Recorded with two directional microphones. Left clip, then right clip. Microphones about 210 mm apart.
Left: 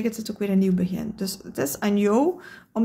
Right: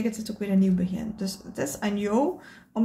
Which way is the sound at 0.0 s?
40° left (ahead or behind).